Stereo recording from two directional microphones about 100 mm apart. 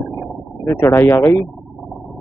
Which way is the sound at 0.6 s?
30° left (ahead or behind).